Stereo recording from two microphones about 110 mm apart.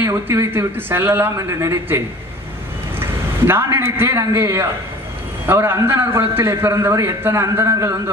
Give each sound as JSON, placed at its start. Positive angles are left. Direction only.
{"t": 0.0, "sound": "a man's voice", "side_deg": -20}